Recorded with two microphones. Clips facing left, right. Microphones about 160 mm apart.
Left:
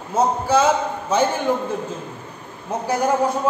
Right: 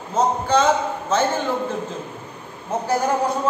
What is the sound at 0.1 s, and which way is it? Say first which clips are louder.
A man's voice: left 1 dB; 10° left (ahead or behind).